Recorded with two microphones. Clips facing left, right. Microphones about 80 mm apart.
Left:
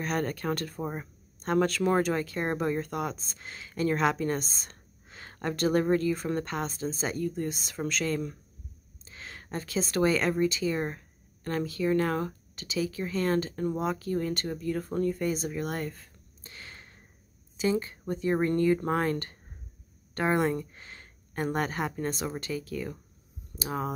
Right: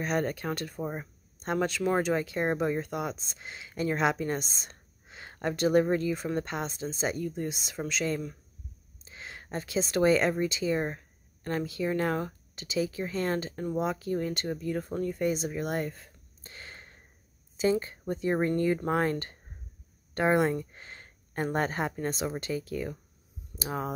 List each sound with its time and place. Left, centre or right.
0.0 s speech: centre
0.7 s speech: centre
1.4 s speech: centre
20.7 s a sound: right
21.9 s speech: centre